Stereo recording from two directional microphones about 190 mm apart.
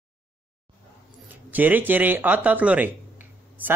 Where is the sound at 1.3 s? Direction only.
10° right (ahead or behind).